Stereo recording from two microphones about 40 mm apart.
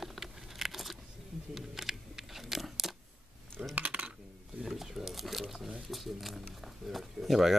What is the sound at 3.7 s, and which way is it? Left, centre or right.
Typing, right.